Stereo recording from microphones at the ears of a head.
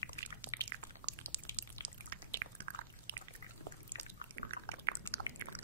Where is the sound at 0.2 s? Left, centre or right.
Right.